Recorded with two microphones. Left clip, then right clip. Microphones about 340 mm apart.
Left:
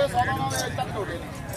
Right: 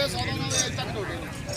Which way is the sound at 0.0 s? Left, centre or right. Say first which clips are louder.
Left 5 dB; left.